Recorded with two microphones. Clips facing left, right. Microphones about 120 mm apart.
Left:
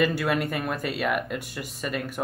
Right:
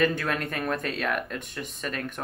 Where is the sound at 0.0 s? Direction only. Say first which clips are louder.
Left 2 dB; 10° left (ahead or behind).